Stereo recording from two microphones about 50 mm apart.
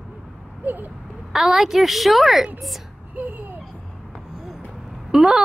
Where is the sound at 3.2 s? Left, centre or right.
Right.